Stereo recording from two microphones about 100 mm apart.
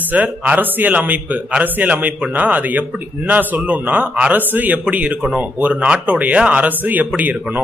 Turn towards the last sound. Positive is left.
turn(degrees=-15)  # may be behind; listen again after turning